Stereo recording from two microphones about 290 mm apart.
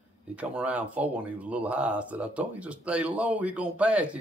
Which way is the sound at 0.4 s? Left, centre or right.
Centre.